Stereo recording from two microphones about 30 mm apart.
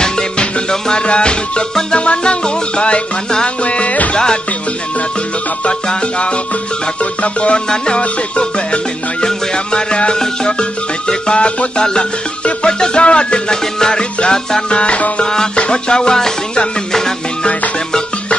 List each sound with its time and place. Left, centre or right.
0.0 s music: left
3.6 s music: left
4.1 s music: left
5.7 s music: left
14.8 s music: left